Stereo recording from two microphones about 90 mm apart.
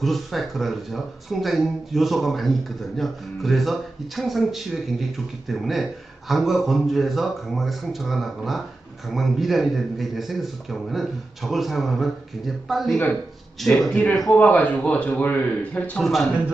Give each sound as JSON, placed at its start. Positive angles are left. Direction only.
{"t": 0.0, "sound": "speech", "side_deg": 0}
{"t": 14.3, "sound": "speech", "side_deg": 20}
{"t": 16.0, "sound": "speech", "side_deg": 0}